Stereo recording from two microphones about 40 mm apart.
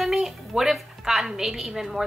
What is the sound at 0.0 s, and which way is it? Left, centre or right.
A woman's voice, centre.